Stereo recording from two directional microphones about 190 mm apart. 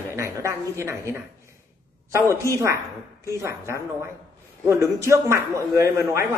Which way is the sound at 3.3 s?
15° right (ahead or behind).